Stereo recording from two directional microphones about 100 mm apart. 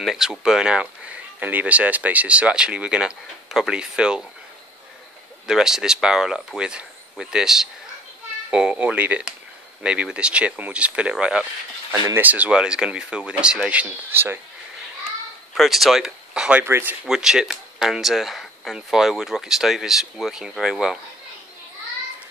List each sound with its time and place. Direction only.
0.0 s speech: 5° right (ahead or behind)
5.5 s speech: 5° right (ahead or behind)
11.9 s speech: 35° right (ahead or behind)
12.2 s speech: 15° right (ahead or behind)
13.8 s speech: 20° right (ahead or behind)
15.5 s speech: centre (ahead or behind)
16.6 s speech: 25° right (ahead or behind)
17.0 s speech: 5° right (ahead or behind)